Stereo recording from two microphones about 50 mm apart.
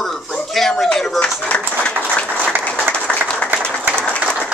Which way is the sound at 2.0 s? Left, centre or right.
Left.